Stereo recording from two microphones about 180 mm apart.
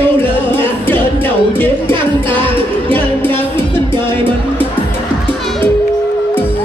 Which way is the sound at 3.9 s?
10° left (ahead or behind).